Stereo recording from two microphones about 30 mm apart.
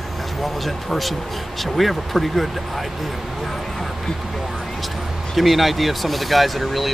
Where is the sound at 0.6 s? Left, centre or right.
Centre.